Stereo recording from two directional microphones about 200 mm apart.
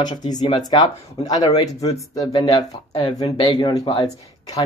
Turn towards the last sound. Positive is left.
turn(degrees=25)  # may be behind; listen again after turning